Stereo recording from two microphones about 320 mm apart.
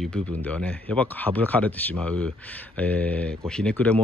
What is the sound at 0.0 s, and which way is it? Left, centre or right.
Speech, centre.